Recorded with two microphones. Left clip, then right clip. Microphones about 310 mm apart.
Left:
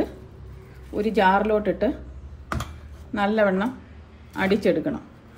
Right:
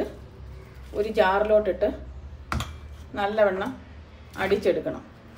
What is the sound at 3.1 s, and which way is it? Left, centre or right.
A woman's voice, left.